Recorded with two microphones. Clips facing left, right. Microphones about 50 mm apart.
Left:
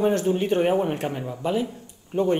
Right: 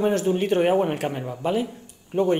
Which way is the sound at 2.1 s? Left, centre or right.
Right.